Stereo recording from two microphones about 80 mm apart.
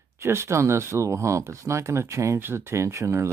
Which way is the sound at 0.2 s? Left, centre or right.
Right.